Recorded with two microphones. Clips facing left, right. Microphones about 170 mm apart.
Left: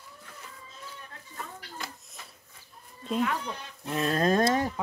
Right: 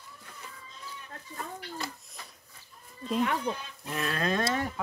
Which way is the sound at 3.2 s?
30° right (ahead or behind).